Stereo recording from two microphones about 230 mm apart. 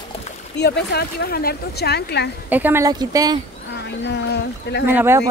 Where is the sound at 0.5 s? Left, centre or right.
Left.